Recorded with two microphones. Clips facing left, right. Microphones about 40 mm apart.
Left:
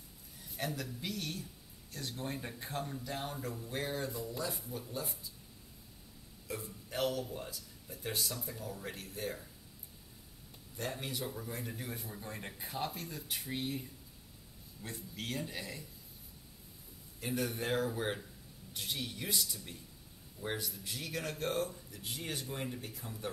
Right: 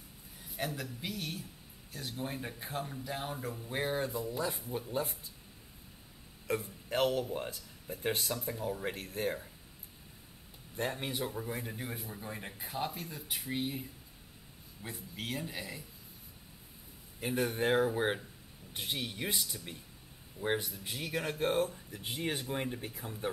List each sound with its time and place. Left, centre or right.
0.4 s a man's voice: centre
3.7 s speech: right
6.4 s speech: right
10.8 s a man's voice: right; by 15.8 s centre
17.2 s speech: right